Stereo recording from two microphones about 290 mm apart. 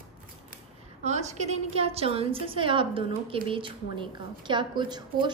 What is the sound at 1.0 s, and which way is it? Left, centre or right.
A woman's voice, right.